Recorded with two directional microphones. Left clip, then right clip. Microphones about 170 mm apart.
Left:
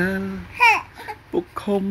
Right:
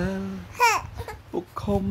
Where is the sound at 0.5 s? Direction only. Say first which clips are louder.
Left 5 dB; 20° right (ahead or behind).